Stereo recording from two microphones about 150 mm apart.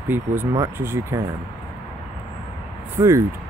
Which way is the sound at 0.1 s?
15° right (ahead or behind).